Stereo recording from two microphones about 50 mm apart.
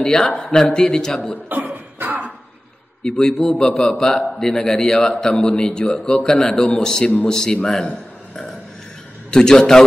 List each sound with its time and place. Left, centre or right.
0.0 s a man's voice: centre
1.5 s cough: right
3.0 s a man's voice: centre
9.3 s a man's voice: centre